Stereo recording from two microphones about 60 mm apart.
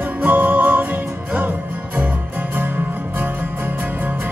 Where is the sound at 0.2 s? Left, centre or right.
Right.